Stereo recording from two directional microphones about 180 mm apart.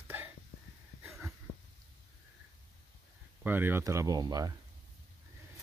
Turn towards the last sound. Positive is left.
turn(degrees=-20)  # may be behind; listen again after turning